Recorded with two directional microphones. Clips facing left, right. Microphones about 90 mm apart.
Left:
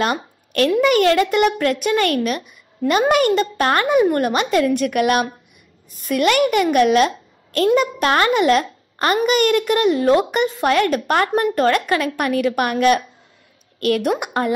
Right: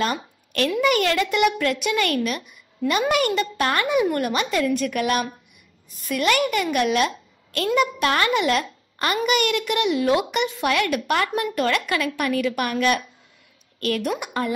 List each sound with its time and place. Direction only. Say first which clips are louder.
0.0 s a woman's voice: left 4 dB; 45° left (ahead or behind)